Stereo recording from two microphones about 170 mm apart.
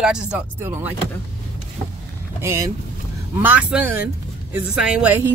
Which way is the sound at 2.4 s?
20° right (ahead or behind).